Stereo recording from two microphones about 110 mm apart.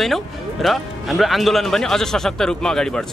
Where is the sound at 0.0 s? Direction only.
Centre (ahead or behind).